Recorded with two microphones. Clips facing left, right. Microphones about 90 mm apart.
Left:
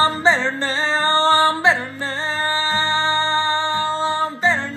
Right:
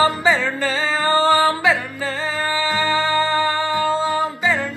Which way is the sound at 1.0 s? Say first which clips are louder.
Right 1 dB; 10° right (ahead or behind).